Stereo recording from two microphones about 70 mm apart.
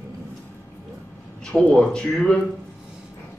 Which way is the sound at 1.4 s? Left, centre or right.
Centre.